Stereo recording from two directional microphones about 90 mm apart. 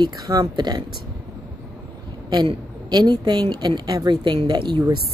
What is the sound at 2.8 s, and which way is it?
A woman's voice, 50° right (ahead or behind).